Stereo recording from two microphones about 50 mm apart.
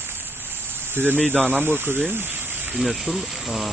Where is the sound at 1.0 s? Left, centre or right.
Right.